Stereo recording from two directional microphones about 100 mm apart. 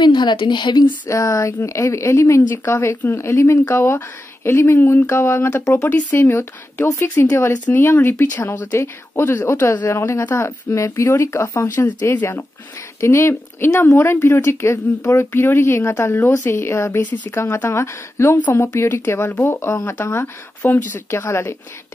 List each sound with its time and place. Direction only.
0.0 s a woman's voice: 50° left (ahead or behind)
1.0 s a sound: 30° left (ahead or behind)
1.6 s speech: 25° left (ahead or behind)
5.8 s speech: 15° left (ahead or behind)
17.0 s speech: 15° left (ahead or behind)